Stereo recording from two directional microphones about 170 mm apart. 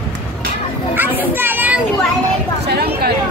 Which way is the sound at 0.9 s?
10° right (ahead or behind).